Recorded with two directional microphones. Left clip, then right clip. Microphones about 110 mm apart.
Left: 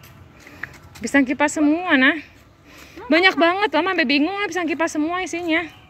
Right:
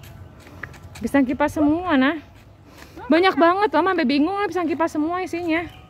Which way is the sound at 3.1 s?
35° right (ahead or behind).